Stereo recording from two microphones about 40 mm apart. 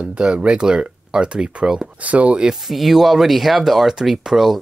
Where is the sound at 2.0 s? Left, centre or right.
Right.